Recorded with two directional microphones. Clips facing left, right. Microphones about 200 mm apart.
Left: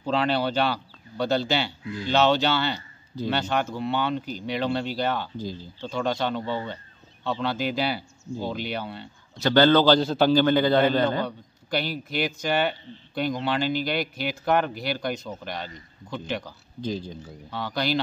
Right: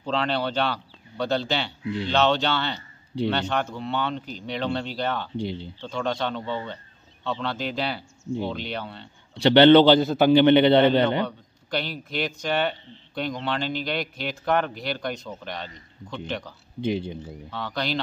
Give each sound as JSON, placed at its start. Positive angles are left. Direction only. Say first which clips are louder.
{"t": 0.0, "sound": "speech", "louder": "left 2 dB", "side_deg": 5}
{"t": 5.4, "sound": "speech", "louder": "right 4 dB", "side_deg": -70}
{"t": 5.8, "sound": "a man's voice", "louder": "left 2 dB", "side_deg": 5}
{"t": 9.3, "sound": "a man's voice", "louder": "right 5 dB", "side_deg": -25}
{"t": 11.2, "sound": "speech", "louder": "even", "side_deg": 5}
{"t": 16.8, "sound": "speech", "louder": "right 4 dB", "side_deg": -65}
{"t": 17.5, "sound": "speech", "louder": "left 2 dB", "side_deg": 5}